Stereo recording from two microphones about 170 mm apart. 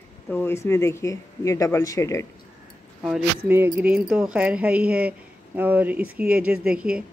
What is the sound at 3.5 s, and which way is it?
Speech, 10° right (ahead or behind).